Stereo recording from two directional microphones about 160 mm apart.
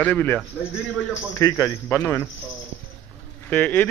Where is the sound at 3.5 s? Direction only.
10° left (ahead or behind).